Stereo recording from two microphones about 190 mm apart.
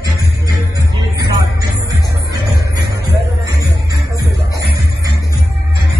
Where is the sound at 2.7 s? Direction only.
15° right (ahead or behind).